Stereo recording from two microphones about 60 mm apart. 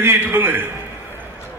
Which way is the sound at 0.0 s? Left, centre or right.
Right.